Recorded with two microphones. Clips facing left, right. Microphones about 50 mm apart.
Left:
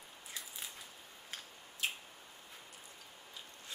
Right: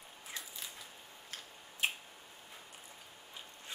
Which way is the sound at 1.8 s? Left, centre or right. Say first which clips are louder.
Right 3 dB; right.